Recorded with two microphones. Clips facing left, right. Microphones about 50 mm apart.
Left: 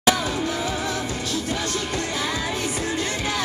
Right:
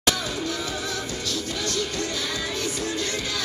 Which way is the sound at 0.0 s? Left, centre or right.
Left.